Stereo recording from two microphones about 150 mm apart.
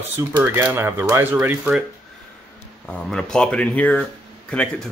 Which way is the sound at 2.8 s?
5° left (ahead or behind).